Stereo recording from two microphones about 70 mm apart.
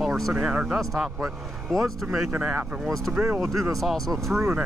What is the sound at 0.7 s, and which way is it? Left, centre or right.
Speech, centre.